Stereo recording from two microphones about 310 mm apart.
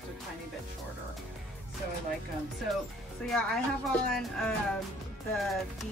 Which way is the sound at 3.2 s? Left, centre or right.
Centre.